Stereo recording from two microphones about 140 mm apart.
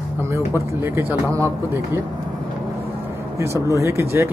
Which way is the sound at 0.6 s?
15° right (ahead or behind).